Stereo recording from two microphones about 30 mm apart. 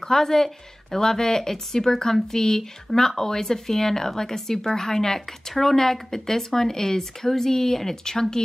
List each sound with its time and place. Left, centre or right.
0.0 s speech: centre